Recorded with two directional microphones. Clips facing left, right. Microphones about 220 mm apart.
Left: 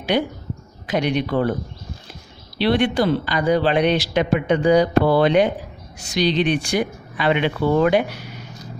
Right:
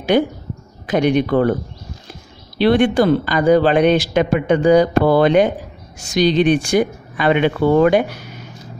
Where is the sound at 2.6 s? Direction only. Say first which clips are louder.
Right 5 dB; 50° right (ahead or behind).